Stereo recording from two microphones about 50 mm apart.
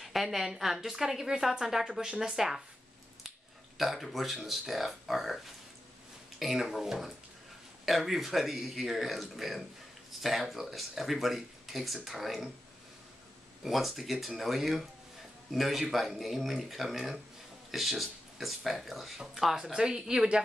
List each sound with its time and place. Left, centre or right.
0.0 s a woman's voice: centre
6.4 s speech: centre
13.7 s speech: centre